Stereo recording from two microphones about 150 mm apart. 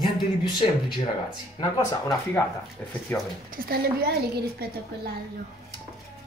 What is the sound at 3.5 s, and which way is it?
A woman's voice, 80° right.